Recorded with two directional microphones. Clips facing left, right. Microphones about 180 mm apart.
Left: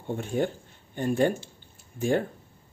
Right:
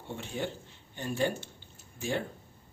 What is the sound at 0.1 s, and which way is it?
A man's voice, 50° left (ahead or behind).